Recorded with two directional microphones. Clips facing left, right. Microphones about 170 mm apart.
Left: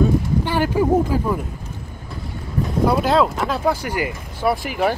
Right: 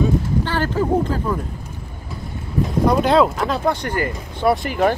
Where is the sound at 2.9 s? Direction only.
5° left (ahead or behind).